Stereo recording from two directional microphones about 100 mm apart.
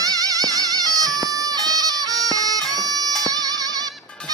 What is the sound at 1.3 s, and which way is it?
Bagpipes, 35° right (ahead or behind).